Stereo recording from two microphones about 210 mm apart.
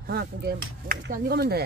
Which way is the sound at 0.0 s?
50° right (ahead or behind).